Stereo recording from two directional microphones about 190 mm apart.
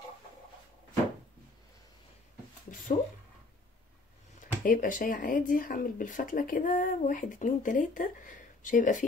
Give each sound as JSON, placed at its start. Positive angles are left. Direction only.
{"t": 4.4, "sound": "speech", "side_deg": 45}